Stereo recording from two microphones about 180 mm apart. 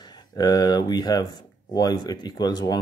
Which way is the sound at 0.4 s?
25° left (ahead or behind).